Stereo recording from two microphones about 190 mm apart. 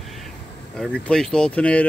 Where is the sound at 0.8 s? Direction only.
Centre (ahead or behind).